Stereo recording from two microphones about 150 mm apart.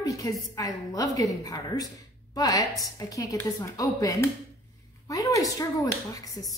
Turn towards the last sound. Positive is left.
turn(degrees=25)  # may be behind; listen again after turning